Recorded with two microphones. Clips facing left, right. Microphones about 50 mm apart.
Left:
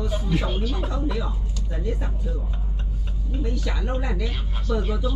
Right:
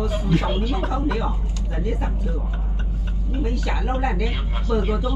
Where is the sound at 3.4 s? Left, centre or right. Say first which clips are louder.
Right 3 dB; right.